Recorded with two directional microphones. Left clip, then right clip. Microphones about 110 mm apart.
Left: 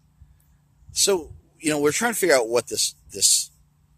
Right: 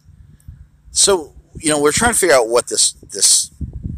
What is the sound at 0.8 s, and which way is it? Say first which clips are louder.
Speech: right 7 dB; 45° left (ahead or behind).